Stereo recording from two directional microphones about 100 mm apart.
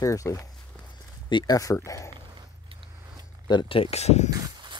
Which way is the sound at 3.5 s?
55° left (ahead or behind).